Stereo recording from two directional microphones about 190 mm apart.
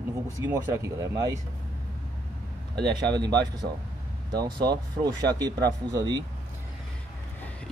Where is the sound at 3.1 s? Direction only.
20° right (ahead or behind).